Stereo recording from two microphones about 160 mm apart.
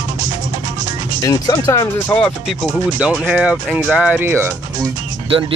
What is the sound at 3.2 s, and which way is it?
Speech, 5° right (ahead or behind).